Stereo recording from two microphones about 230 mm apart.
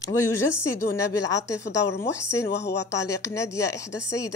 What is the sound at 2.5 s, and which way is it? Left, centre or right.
Speech, left.